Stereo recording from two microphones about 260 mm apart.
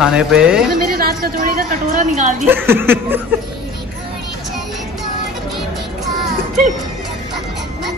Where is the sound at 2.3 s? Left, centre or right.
Centre.